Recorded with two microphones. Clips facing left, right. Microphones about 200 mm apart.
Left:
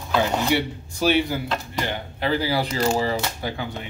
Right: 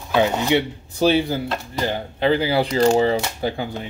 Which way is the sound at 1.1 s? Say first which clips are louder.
Right 2 dB; 30° right (ahead or behind).